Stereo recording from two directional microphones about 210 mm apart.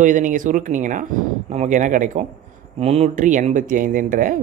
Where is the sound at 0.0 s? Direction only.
40° right (ahead or behind).